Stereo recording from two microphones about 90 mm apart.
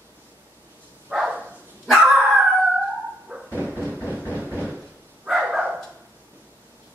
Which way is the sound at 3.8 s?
20° left (ahead or behind).